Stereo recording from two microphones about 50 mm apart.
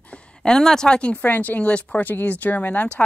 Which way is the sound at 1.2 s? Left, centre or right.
Left.